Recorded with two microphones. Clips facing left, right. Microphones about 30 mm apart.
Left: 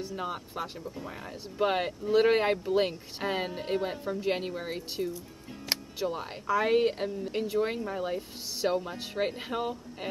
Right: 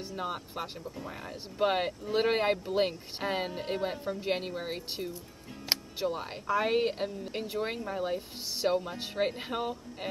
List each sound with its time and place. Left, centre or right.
0.1 s speech: centre
5.7 s music: centre
6.1 s speech: centre